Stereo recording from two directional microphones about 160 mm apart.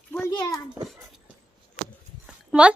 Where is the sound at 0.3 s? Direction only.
25° left (ahead or behind).